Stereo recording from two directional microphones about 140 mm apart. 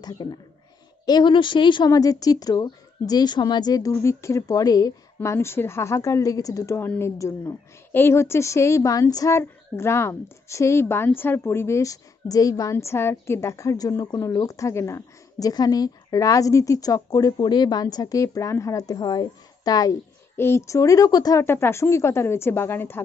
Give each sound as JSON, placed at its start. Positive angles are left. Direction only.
{"t": 0.0, "sound": "a woman's voice", "side_deg": 30}